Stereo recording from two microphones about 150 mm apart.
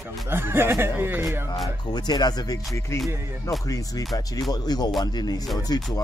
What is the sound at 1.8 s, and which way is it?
Speech, 30° left (ahead or behind).